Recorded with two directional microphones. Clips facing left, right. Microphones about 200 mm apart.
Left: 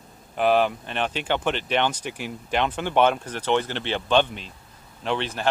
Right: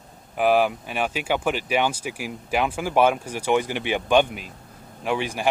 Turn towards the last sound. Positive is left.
turn(degrees=-10)  # may be behind; listen again after turning